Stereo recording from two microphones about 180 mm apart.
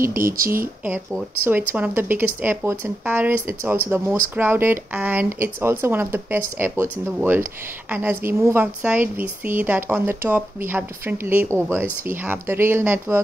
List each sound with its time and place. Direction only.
0.1 s speech: 50° right (ahead or behind)
1.4 s speech: 10° right (ahead or behind)